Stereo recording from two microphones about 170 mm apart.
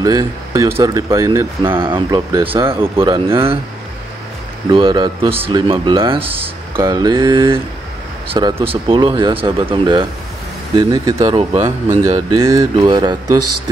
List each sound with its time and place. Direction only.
0.0 s speech: 20° right (ahead or behind)
1.8 s speech: 30° right (ahead or behind)
3.0 s speech: 30° right (ahead or behind)
4.6 s speech: 25° right (ahead or behind)
6.3 s speech: 15° right (ahead or behind)